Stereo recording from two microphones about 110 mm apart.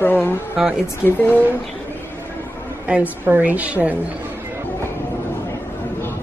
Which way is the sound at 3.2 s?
15° right (ahead or behind).